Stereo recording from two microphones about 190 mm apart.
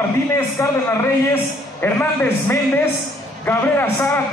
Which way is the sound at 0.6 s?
15° left (ahead or behind).